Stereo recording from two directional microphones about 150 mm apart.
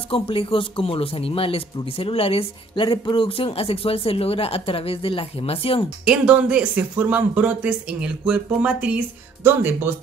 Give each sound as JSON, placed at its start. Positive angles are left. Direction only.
{"t": 0.1, "sound": "speech", "side_deg": 35}
{"t": 6.0, "sound": "speech", "side_deg": -5}